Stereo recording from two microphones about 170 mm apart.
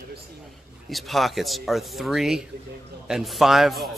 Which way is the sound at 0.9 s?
Centre (ahead or behind).